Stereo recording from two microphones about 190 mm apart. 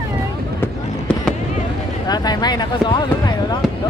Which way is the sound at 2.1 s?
20° left (ahead or behind).